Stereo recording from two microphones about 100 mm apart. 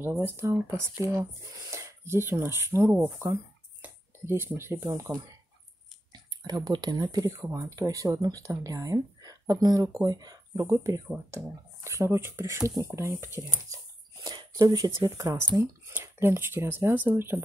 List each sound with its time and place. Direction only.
0.2 s speech: 25° right (ahead or behind); by 7.2 s 40° right (ahead or behind)
7.2 s speech: 25° right (ahead or behind)
14.2 s a sound: 40° right (ahead or behind)
14.9 s speech: 30° right (ahead or behind)